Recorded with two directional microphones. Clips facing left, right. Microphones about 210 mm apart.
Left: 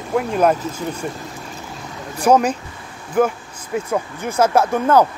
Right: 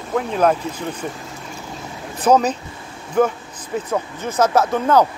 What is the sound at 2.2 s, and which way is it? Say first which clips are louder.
Speech: left 1 dB; 10° left (ahead or behind).